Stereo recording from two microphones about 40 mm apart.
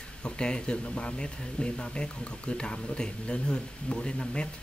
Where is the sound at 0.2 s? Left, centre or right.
Left.